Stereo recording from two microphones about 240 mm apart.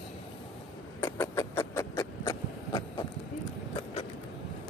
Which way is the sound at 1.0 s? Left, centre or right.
Centre.